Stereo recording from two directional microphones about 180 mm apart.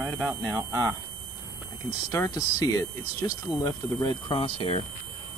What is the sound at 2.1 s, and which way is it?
Speech, 20° left (ahead or behind).